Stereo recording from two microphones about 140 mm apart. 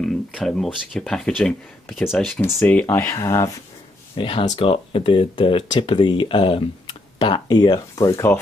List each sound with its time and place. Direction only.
0.0 s speech: centre (ahead or behind); by 3.5 s 20° left (ahead or behind)
4.2 s speech: 40° left (ahead or behind)